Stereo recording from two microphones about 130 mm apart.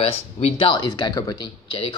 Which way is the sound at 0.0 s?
50° left (ahead or behind).